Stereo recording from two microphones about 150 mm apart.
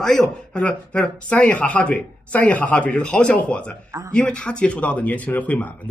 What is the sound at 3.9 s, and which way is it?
Speech, 20° right (ahead or behind).